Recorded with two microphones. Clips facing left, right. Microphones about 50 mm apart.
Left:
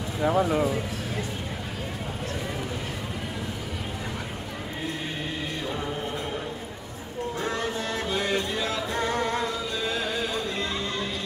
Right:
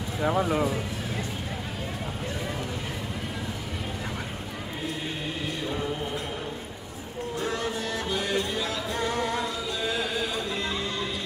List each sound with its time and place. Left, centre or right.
0.2 s speech: centre
7.5 s music: left